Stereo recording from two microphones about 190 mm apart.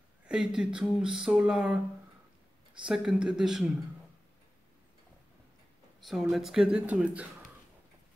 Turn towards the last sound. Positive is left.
turn(degrees=-5)  # may be behind; listen again after turning